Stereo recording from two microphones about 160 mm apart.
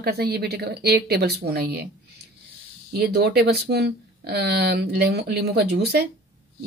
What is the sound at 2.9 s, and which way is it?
Speech, 90° right.